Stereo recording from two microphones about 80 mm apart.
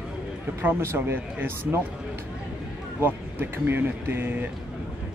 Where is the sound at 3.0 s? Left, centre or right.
Right.